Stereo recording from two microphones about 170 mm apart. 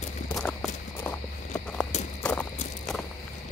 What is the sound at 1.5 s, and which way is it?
Walk, 5° left (ahead or behind).